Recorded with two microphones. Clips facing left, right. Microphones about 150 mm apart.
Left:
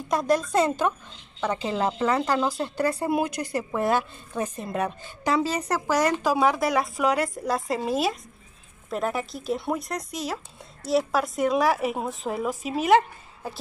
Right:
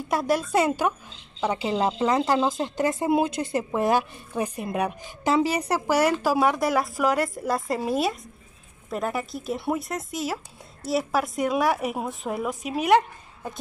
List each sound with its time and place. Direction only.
0.1 s a woman's voice: 5° right (ahead or behind)